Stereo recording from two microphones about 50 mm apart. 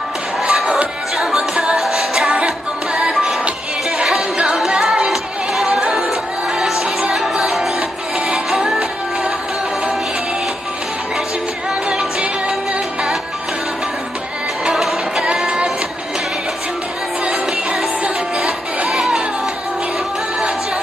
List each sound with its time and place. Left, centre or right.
0.4 s music: centre
4.6 s music: centre
11.9 s music: centre
14.6 s music: centre
17.2 s music: centre
18.9 s music: centre